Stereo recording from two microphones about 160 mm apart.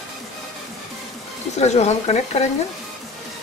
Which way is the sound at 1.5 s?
45° left (ahead or behind).